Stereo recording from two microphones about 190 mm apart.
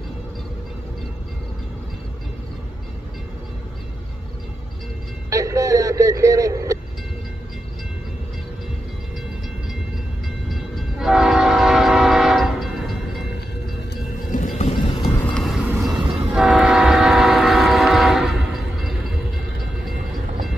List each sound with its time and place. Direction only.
5.3 s vehicle: 15° right (ahead or behind)
10.5 s train: centre (ahead or behind)
14.3 s music: 45° left (ahead or behind)
14.7 s music: 25° left (ahead or behind)
15.3 s train: centre (ahead or behind)